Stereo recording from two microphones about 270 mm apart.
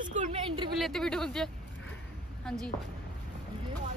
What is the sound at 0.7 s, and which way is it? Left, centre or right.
Speech, centre.